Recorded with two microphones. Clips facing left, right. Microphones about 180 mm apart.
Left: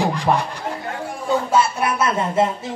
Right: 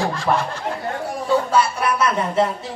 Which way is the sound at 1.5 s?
25° left (ahead or behind).